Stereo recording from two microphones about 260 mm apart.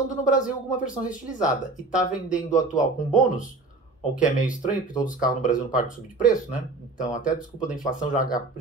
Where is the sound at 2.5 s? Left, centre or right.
Left.